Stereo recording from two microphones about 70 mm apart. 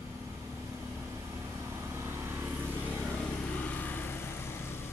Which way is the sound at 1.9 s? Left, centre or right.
Right.